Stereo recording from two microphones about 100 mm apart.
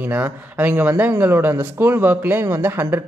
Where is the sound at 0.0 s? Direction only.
20° right (ahead or behind).